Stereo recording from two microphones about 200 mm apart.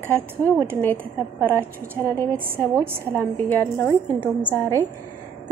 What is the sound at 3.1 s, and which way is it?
A woman's voice, 10° left (ahead or behind).